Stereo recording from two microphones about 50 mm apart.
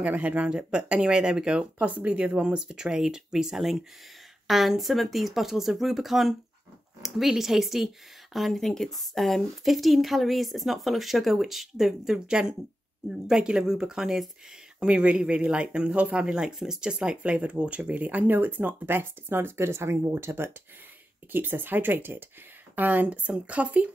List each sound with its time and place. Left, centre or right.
0.0 s speech: right
1.8 s speech: right; by 14.2 s centre
14.8 s speech: right
16.3 s speech: centre; by 20.5 s right
21.3 s speech: right
22.8 s speech: right